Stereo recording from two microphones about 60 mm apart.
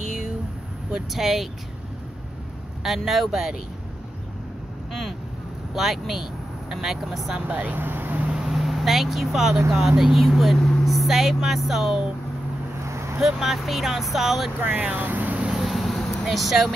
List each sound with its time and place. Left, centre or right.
0.9 s speech: centre
2.8 s speech: centre
5.8 s speech: centre
7.3 s speech: right
8.3 s vehicle: centre
9.7 s speech: centre
12.8 s vehicle: right
13.2 s speech: centre
14.6 s speech: right
15.4 s vehicle: centre